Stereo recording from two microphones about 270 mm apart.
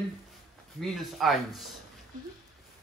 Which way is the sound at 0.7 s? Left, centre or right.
Centre.